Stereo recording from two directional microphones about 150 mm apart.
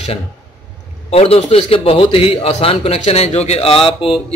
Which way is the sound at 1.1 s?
40° left (ahead or behind).